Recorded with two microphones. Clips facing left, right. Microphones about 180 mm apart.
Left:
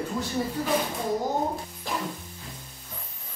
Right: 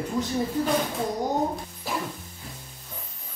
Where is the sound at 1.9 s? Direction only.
5° right (ahead or behind).